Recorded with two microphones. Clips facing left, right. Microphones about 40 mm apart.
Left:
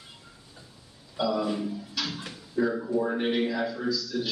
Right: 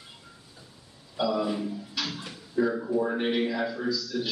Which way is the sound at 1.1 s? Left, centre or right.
Centre.